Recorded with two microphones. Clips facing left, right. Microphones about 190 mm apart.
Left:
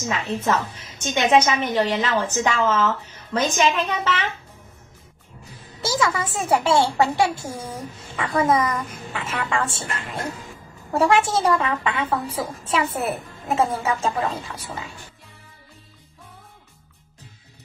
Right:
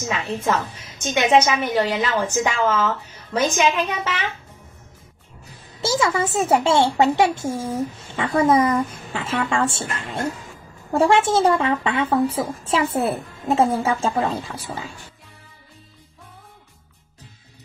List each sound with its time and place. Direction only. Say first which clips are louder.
0.1 s a woman's voice: even; 10° right (ahead or behind)
5.8 s a woman's voice: right 3 dB; 25° right (ahead or behind)